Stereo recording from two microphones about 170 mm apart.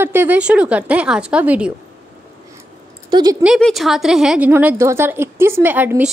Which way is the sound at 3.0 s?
25° right (ahead or behind).